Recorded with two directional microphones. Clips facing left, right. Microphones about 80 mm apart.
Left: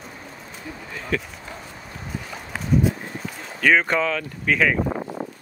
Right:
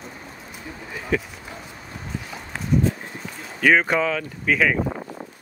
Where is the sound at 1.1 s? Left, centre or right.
Centre.